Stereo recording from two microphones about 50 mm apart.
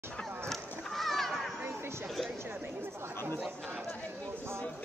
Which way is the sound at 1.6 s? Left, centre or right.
Right.